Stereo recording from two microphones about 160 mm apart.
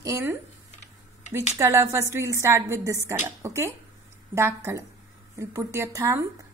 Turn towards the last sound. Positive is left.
turn(degrees=-15)  # may be behind; listen again after turning